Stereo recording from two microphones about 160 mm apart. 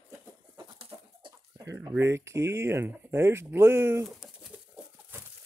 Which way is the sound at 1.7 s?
15° right (ahead or behind).